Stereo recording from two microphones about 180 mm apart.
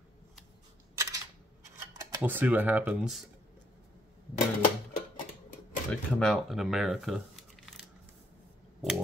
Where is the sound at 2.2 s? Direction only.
10° right (ahead or behind).